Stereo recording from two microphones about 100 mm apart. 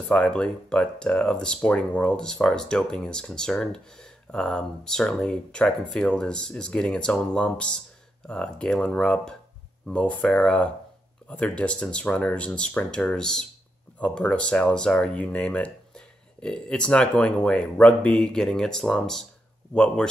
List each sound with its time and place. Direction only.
0.1 s speech: 10° left (ahead or behind)